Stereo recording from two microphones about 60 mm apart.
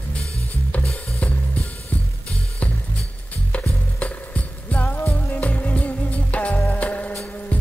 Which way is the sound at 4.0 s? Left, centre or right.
Left.